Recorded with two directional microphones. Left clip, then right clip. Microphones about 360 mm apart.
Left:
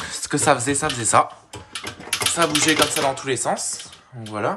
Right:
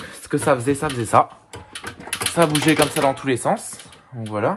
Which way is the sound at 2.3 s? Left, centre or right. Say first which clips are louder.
Right 2 dB; centre.